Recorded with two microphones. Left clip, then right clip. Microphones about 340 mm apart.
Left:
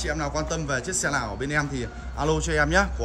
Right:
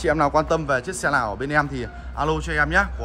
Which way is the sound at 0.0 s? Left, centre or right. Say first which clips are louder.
Right 9 dB; centre.